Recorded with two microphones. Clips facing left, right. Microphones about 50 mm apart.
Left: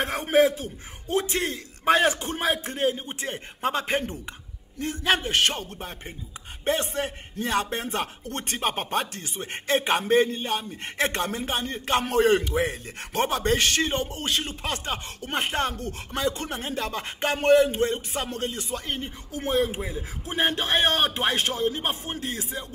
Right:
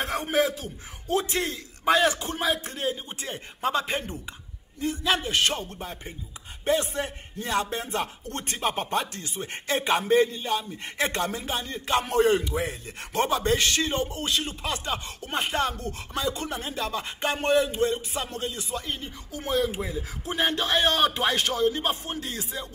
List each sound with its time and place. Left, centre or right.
0.0 s a man's voice: left
5.0 s speech: left
13.1 s speech: left